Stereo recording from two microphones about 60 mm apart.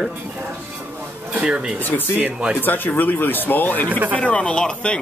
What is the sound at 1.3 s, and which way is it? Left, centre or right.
Speech, centre.